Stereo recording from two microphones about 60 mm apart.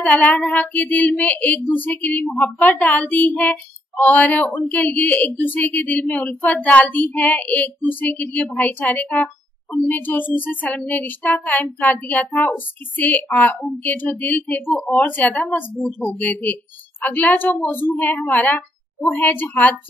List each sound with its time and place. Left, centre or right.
0.0 s child singing: left
7.9 s speech: left
8.5 s child singing: left
8.9 s speech: left
9.8 s child singing: left